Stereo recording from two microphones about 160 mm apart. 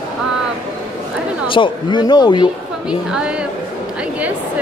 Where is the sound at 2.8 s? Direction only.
5° right (ahead or behind).